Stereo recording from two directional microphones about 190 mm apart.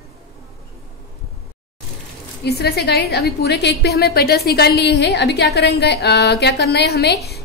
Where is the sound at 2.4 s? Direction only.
60° left (ahead or behind).